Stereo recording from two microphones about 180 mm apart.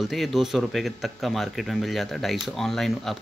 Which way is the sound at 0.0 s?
Centre (ahead or behind).